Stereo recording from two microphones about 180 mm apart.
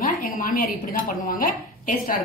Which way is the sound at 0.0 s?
50° left (ahead or behind).